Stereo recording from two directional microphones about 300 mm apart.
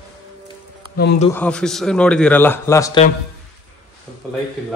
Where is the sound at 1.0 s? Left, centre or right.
Left.